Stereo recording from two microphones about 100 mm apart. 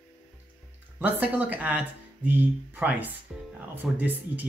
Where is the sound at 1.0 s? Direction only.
15° right (ahead or behind).